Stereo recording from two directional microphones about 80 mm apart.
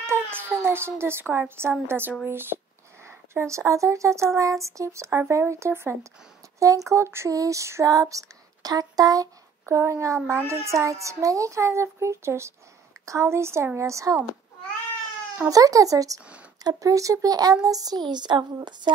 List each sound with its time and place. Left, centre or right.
0.0 s a child's voice: right
4.4 s female singing: right
15.4 s speech: right
18.0 s speech: right